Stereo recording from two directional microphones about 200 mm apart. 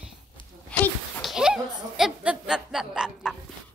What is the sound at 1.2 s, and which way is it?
Chuckle, 5° right (ahead or behind).